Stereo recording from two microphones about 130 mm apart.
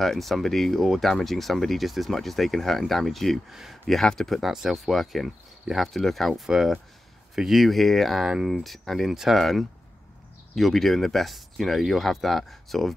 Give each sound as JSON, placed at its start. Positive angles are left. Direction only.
{"t": 0.0, "sound": "speech", "side_deg": 0}